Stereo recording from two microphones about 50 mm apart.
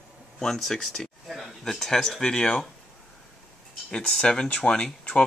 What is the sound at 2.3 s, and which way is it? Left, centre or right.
Speech, centre.